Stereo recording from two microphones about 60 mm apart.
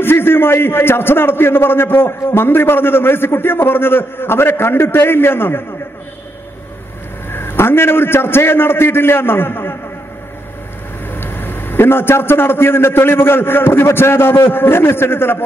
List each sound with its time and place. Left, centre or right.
0.0 s a man's voice: left
7.2 s a man's voice: left
11.1 s a man's voice: left